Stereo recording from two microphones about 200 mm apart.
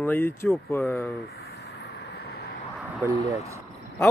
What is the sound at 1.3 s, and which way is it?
Vehicle, 50° left (ahead or behind).